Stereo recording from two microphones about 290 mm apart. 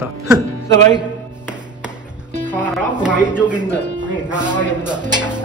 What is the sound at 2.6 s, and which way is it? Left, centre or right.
Music, centre.